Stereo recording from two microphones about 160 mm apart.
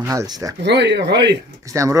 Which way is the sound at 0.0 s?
20° right (ahead or behind).